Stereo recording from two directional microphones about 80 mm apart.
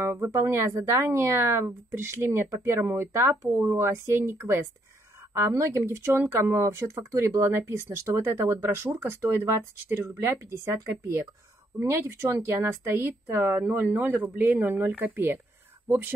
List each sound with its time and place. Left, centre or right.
0.0 s speech: right